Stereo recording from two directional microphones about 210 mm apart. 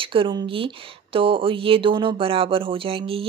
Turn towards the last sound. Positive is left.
turn(degrees=-25)  # may be behind; listen again after turning